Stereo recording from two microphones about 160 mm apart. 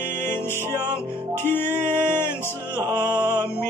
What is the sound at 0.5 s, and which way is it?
Music, 15° right (ahead or behind).